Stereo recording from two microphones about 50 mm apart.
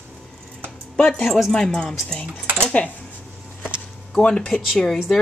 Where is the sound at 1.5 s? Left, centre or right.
Centre.